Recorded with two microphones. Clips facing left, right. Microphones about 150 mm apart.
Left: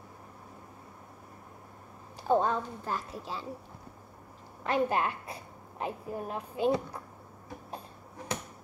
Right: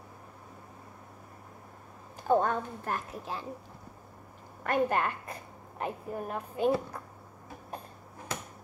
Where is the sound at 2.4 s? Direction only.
55° right (ahead or behind).